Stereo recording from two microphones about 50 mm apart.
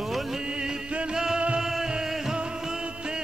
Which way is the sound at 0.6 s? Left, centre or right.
Centre.